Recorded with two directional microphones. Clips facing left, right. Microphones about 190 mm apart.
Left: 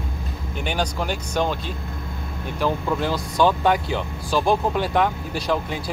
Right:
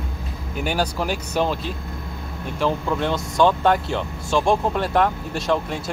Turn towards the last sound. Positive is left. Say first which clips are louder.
# right 1 dB
turn(degrees=0)  # may be behind; listen again after turning